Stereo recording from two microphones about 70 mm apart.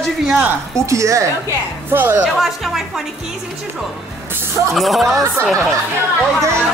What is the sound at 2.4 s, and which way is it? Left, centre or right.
Speech, centre.